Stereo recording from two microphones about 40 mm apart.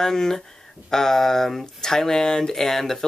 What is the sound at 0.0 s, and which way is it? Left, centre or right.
Speech, centre.